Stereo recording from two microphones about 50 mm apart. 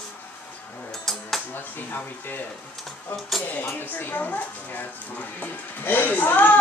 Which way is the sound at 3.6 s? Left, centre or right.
Left.